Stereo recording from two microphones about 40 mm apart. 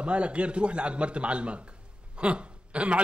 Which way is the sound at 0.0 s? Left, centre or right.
Right.